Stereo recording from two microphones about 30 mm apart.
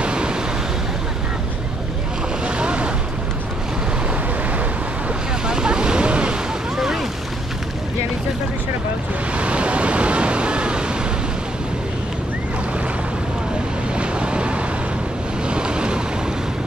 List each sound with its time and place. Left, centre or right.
0.0 s vehicle: right
2.4 s boat: right
5.5 s boat: right
9.4 s waves: right
13.9 s waves: right